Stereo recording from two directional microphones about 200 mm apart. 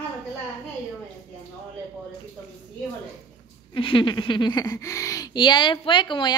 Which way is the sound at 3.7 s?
25° left (ahead or behind).